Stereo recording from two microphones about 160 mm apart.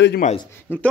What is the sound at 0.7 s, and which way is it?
Speech, 10° left (ahead or behind).